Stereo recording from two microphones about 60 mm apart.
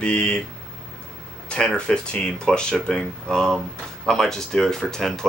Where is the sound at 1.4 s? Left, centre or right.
Centre.